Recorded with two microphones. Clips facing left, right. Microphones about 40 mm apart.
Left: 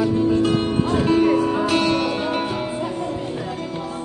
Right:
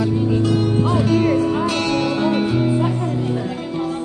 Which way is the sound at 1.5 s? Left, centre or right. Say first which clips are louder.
Even; centre.